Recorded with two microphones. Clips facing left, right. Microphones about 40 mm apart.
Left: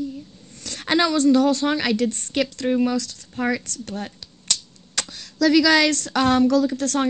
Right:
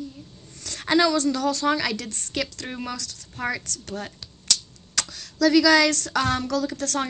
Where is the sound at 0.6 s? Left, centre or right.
Left.